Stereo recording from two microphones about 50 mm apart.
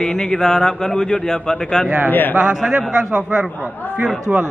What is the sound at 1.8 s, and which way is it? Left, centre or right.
Speech, right.